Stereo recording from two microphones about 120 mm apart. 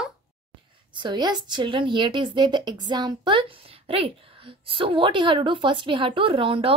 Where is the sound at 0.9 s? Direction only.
40° right (ahead or behind).